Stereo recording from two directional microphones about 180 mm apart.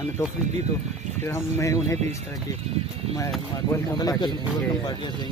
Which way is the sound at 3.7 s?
20° left (ahead or behind).